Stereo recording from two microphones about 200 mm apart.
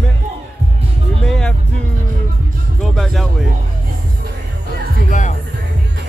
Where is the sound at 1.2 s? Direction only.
5° left (ahead or behind).